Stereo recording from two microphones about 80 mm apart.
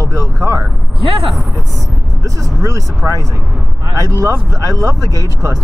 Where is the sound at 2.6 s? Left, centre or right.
Right.